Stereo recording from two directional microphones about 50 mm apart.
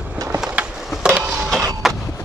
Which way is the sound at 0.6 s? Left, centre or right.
Right.